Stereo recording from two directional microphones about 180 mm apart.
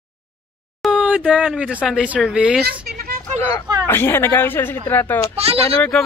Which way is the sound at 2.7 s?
55° right (ahead or behind).